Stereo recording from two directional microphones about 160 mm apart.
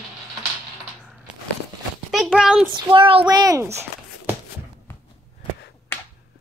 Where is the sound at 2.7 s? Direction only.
30° right (ahead or behind).